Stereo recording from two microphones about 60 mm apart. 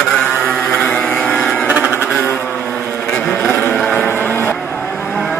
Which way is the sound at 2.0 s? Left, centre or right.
Centre.